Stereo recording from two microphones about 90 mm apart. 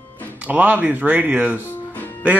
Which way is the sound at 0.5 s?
20° right (ahead or behind).